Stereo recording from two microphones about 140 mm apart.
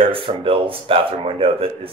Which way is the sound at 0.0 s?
40° right (ahead or behind).